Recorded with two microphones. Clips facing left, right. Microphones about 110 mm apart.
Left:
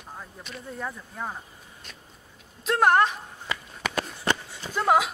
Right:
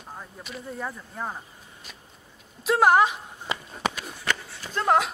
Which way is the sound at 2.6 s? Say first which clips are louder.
Right 2 dB; 5° right (ahead or behind).